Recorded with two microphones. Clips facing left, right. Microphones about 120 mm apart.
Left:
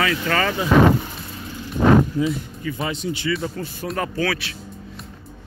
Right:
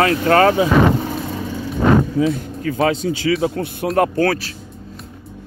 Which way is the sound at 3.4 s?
70° right (ahead or behind).